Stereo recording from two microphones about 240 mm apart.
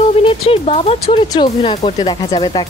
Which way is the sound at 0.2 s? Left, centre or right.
Left.